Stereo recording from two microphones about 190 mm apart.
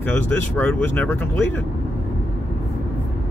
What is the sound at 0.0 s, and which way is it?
Speech, 10° left (ahead or behind).